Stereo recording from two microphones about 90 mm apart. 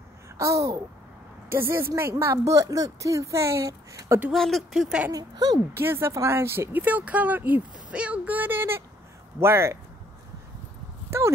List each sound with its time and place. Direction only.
0.4 s speech: 35° right (ahead or behind)
4.3 s speech: centre (ahead or behind)
5.1 s speech: 45° right (ahead or behind)
5.8 s speech: 25° right (ahead or behind)
11.1 s speech: 30° right (ahead or behind)